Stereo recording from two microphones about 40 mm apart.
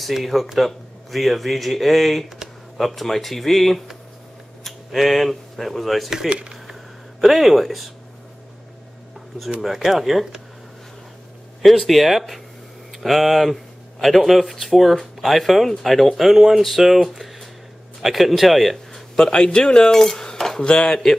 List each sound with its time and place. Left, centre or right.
0.0 s speech: centre
2.2 s a sound: centre
2.8 s speech: centre
6.2 s speech: right
7.2 s speech: centre
9.6 s speech: centre
11.9 s speech: centre
19.1 s speech: left
20.2 s cutlery: centre
20.6 s speech: centre